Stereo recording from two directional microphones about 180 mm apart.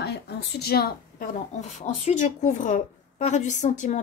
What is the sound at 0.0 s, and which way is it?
Speech, 65° left (ahead or behind).